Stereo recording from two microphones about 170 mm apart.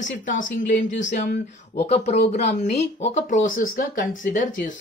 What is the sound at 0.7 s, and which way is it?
Speech, 90° left.